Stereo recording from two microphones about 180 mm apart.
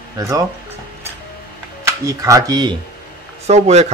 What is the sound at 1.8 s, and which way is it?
Speech, 20° right (ahead or behind).